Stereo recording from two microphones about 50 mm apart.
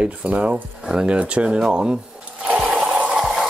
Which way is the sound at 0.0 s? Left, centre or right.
Right.